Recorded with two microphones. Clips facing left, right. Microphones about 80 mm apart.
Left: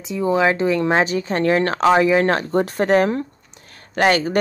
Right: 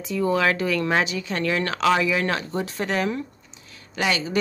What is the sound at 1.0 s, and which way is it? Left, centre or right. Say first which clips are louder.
Speech: left 7 dB; left.